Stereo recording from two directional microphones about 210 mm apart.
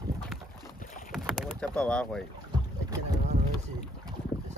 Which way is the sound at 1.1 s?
5° right (ahead or behind).